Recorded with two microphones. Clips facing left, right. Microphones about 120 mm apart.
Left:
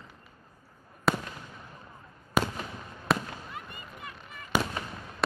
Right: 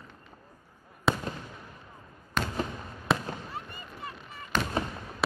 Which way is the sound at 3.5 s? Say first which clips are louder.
Right 2 dB; 35° right (ahead or behind).